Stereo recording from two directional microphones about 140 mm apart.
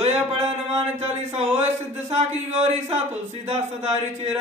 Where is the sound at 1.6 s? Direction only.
50° right (ahead or behind).